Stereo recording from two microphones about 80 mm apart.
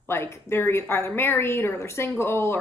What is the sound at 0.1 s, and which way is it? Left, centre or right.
A woman's voice, left.